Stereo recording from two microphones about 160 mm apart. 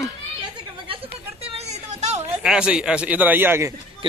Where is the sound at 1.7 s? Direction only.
45° right (ahead or behind).